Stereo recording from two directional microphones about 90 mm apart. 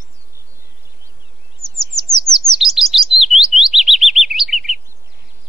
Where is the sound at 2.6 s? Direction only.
Centre (ahead or behind).